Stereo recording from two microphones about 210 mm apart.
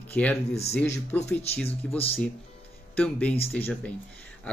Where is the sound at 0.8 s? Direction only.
10° left (ahead or behind).